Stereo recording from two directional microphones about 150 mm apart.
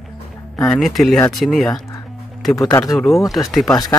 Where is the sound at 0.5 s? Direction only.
10° left (ahead or behind).